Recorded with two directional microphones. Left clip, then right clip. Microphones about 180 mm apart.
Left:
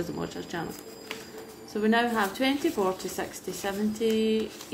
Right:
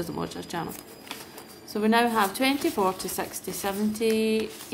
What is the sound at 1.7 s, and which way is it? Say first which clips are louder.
A woman's voice: right 2 dB; 20° right (ahead or behind).